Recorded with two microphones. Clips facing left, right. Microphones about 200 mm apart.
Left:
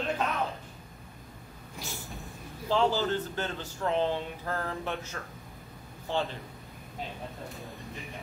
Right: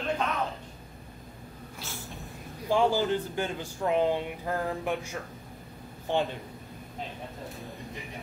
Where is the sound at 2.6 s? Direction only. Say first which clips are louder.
Right 2 dB; 15° right (ahead or behind).